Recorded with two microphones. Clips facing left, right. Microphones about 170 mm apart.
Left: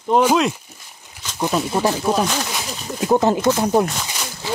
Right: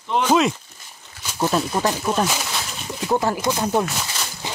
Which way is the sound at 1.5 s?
10° left (ahead or behind).